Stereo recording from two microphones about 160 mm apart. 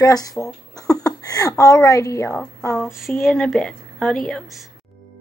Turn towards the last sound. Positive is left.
turn(degrees=5)  # may be behind; listen again after turning